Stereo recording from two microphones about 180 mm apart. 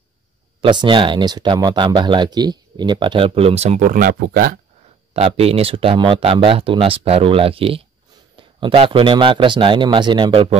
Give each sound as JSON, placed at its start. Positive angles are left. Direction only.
{"t": 0.6, "sound": "speech", "side_deg": -25}
{"t": 5.1, "sound": "speech", "side_deg": -35}